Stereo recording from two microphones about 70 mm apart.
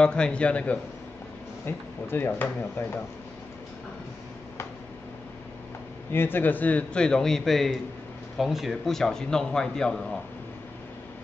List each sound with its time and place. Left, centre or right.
0.0 s a man's voice: centre
1.7 s speech: left
6.1 s a man's voice: left; by 10.0 s centre